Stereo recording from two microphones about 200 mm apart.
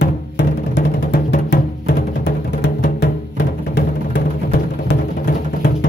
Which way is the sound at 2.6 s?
45° left (ahead or behind).